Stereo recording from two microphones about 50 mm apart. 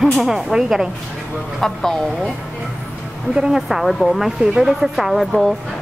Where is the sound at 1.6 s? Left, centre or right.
Centre.